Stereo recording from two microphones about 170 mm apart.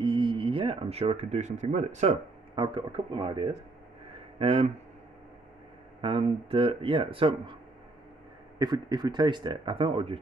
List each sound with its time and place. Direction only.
0.0 s speech: 30° right (ahead or behind)
2.5 s speech: 25° right (ahead or behind)
5.9 s speech: 35° right (ahead or behind)
8.5 s speech: 25° right (ahead or behind)